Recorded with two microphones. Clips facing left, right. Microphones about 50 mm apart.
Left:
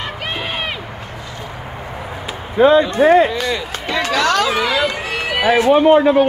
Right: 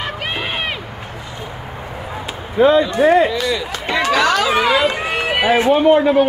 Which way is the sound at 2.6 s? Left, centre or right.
Left.